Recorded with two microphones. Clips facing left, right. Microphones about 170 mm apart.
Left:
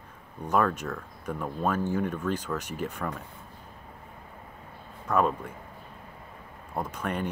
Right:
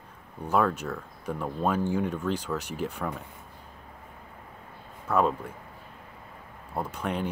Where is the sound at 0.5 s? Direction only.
5° right (ahead or behind).